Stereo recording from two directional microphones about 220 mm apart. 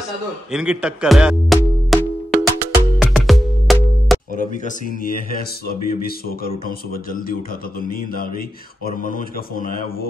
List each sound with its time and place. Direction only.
0.5 s music: 5° right (ahead or behind)
4.4 s speech: 35° left (ahead or behind)